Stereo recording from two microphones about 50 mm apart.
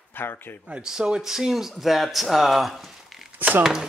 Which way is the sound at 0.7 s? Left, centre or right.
Right.